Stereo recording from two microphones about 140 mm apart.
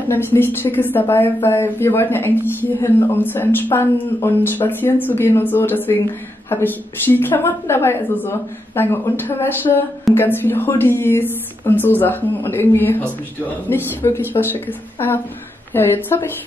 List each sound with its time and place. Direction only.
0.1 s a woman's voice: 15° left (ahead or behind)